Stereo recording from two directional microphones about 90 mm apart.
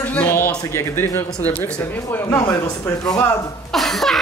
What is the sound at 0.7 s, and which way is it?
Speech, 25° left (ahead or behind).